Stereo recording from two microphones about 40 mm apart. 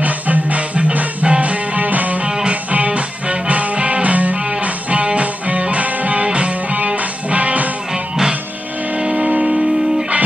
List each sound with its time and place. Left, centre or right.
0.0 s music: right
2.2 s music: right
2.5 s music: right
7.9 s music: centre